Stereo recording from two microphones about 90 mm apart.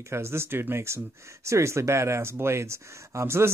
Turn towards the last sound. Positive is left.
turn(degrees=-30)  # may be behind; listen again after turning